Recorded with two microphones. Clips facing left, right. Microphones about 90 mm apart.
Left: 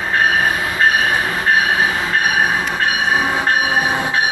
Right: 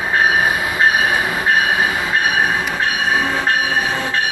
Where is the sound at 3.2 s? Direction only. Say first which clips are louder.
Left 1 dB; 15° left (ahead or behind).